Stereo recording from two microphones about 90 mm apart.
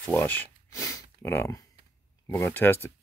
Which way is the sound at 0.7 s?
35° left (ahead or behind).